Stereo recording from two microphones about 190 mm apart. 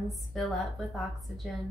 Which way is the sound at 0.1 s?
Centre (ahead or behind).